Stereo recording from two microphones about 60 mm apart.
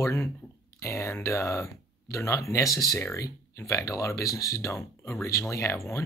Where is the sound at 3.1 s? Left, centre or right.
Left.